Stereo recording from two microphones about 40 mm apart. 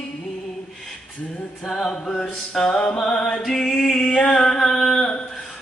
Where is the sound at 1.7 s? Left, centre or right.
Centre.